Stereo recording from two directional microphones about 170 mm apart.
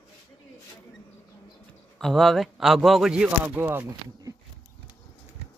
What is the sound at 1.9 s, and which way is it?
Speech, centre (ahead or behind).